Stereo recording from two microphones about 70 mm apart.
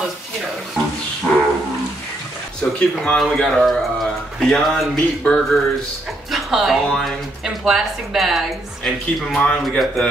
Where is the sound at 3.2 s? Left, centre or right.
Centre.